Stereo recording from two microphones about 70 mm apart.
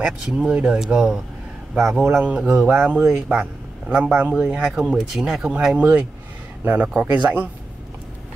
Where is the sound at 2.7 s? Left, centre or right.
Centre.